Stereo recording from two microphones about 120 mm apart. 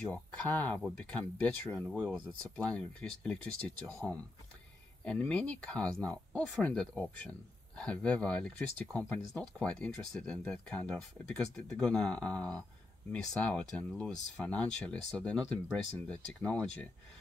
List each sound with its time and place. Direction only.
0.1 s speech: 10° left (ahead or behind)
1.8 s speech: 5° right (ahead or behind)
5.0 s speech: 10° left (ahead or behind)